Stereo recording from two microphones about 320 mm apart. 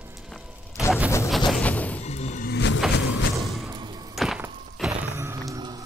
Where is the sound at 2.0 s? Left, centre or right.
Left.